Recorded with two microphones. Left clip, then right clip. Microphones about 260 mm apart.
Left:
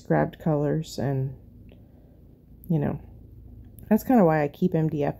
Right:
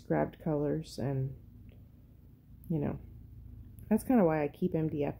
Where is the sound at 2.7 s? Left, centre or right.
Left.